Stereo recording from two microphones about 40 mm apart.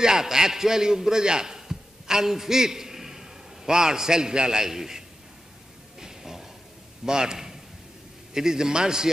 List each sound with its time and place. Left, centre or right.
0.0 s a man's voice: centre
5.9 s a sound: centre
7.1 s a man's voice: centre